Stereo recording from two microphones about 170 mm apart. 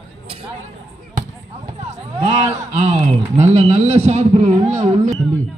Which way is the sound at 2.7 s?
40° right (ahead or behind).